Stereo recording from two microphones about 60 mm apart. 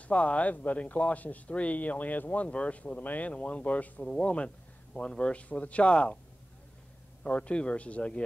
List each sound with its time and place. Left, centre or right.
0.0 s speech: left
7.2 s speech: left